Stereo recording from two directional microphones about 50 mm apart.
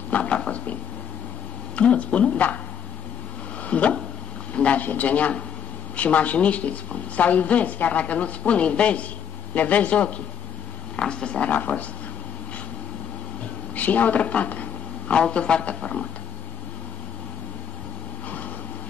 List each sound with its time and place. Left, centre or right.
0.1 s speech: left
1.8 s a woman's voice: left
3.6 s a woman's voice: left
11.5 s speech: left
13.7 s a sound: left
15.1 s a woman's voice: centre